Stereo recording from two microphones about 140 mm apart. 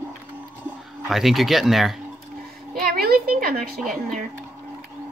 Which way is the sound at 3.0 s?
90° right.